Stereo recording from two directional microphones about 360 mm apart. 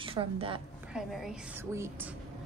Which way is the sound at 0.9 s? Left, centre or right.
Centre.